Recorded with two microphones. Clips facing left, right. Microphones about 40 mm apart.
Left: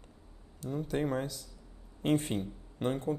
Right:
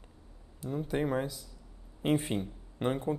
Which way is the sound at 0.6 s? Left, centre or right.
Centre.